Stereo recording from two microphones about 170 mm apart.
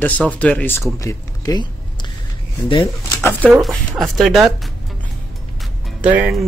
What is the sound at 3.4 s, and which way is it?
Speech, 5° right (ahead or behind).